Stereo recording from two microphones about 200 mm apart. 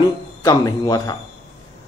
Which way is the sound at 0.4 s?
20° left (ahead or behind).